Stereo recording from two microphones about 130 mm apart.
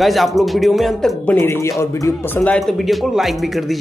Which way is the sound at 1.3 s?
20° left (ahead or behind).